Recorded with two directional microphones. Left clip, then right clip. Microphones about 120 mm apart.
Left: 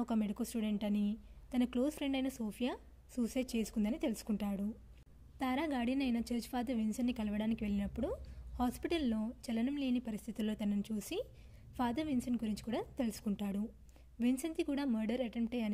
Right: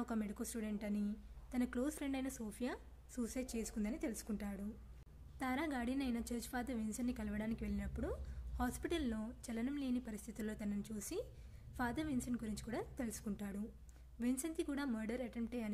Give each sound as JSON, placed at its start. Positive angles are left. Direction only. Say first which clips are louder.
{"t": 0.3, "sound": "a woman's voice", "louder": "left 5 dB", "side_deg": 30}
{"t": 0.6, "sound": "a woman's voice", "louder": "left 6 dB", "side_deg": 40}